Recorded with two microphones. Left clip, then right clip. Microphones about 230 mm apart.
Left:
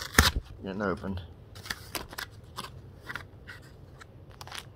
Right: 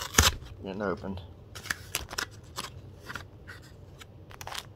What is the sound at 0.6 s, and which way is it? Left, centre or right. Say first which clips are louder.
Speech: left 1 dB; centre.